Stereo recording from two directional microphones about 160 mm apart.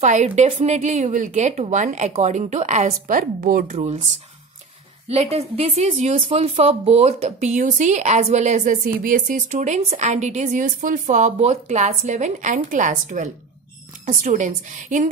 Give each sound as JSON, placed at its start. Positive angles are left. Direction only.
{"t": 0.0, "sound": "a woman's voice", "side_deg": -50}
{"t": 3.7, "sound": "a woman's voice", "side_deg": -40}
{"t": 5.0, "sound": "a woman's voice", "side_deg": -40}
{"t": 6.2, "sound": "a woman's voice", "side_deg": -40}
{"t": 8.8, "sound": "a woman's voice", "side_deg": -60}